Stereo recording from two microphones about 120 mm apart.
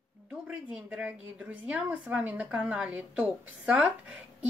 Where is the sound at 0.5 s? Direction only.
10° right (ahead or behind).